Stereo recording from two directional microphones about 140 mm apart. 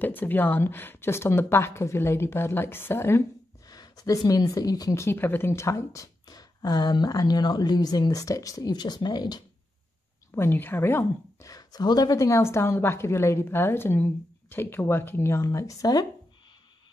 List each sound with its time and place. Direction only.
0.0 s speech: 15° left (ahead or behind); by 9.4 s 30° left (ahead or behind)
10.3 s a woman's voice: 15° left (ahead or behind)